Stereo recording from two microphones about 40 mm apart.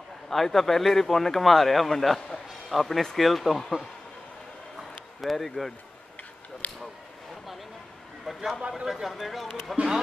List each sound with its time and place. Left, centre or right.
0.3 s speech: centre
5.2 s speech: centre
6.6 s a sound: left
8.3 s a man's voice: centre